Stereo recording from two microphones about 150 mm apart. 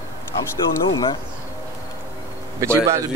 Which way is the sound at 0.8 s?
30° left (ahead or behind).